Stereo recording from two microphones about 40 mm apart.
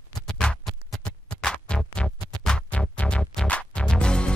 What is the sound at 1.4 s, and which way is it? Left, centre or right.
Music, centre.